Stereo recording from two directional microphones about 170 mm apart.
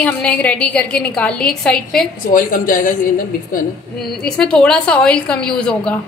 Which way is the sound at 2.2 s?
55° left (ahead or behind).